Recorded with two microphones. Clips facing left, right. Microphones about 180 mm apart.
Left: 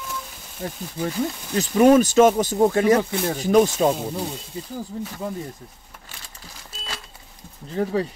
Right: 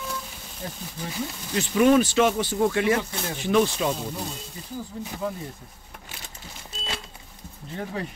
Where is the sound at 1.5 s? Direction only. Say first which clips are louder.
Left 4 dB; 40° left (ahead or behind).